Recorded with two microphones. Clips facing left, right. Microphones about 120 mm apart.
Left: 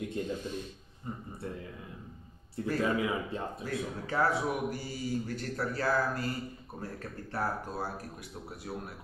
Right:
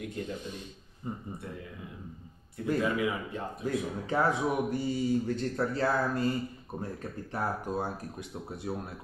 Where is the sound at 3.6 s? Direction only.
20° right (ahead or behind).